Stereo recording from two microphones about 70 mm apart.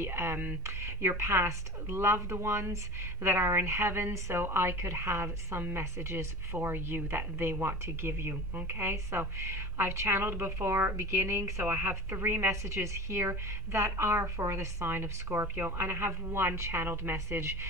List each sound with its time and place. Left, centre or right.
0.0 s a woman's voice: right